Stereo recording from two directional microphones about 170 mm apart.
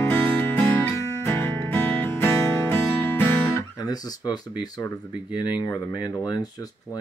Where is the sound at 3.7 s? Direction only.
20° left (ahead or behind).